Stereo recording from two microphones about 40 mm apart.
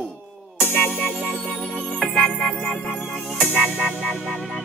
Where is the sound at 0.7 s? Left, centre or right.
Left.